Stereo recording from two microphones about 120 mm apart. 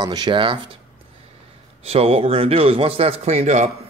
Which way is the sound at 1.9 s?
55° right (ahead or behind).